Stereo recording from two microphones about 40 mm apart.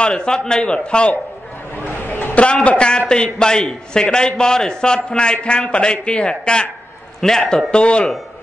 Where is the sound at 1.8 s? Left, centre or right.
Left.